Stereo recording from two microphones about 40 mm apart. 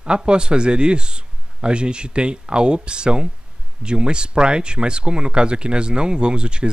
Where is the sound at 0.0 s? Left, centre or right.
Right.